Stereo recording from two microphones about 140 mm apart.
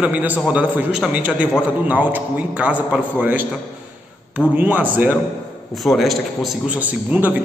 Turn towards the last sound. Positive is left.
turn(degrees=-15)  # may be behind; listen again after turning